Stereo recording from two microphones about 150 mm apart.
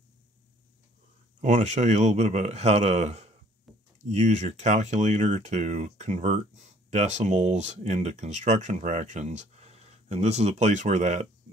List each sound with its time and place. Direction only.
1.4 s speech: 50° right (ahead or behind)
3.7 s a sound: centre (ahead or behind)
4.1 s speech: 50° right (ahead or behind)